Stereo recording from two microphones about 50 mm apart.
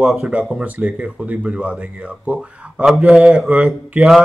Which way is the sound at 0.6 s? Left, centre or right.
Right.